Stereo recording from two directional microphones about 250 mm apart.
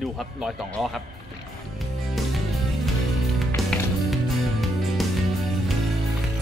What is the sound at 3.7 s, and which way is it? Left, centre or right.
Music, centre.